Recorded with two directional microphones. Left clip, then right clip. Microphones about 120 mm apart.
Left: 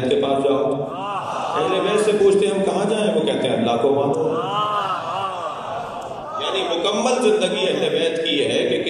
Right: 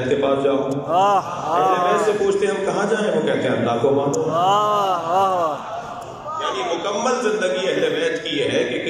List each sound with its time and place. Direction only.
0.9 s a man's voice: 60° right (ahead or behind)
2.2 s a sound: 25° left (ahead or behind)
4.1 s mantra: 45° right (ahead or behind)
7.0 s a man's voice: 25° left (ahead or behind)
8.0 s chant: 25° left (ahead or behind)